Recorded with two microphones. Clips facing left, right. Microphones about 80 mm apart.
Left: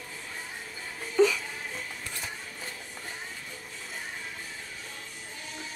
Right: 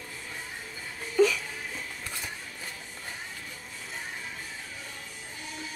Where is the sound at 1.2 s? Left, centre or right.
Left.